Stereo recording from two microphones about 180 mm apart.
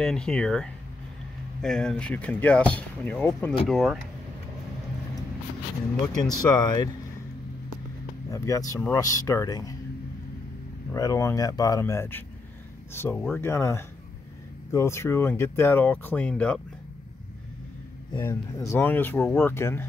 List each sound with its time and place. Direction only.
0.0 s speech: 5° left (ahead or behind)
6.4 s speech: 25° left (ahead or behind)
8.3 s speech: 20° left (ahead or behind)
10.9 s speech: 20° left (ahead or behind)
18.2 s speech: 15° left (ahead or behind)